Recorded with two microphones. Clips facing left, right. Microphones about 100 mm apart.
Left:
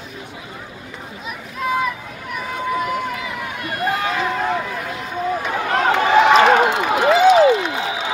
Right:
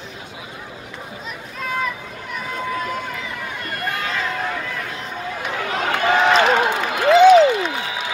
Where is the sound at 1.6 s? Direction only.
5° left (ahead or behind).